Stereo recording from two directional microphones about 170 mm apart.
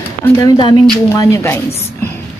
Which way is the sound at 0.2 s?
20° left (ahead or behind).